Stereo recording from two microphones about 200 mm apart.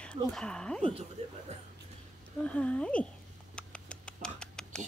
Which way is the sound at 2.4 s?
5° left (ahead or behind).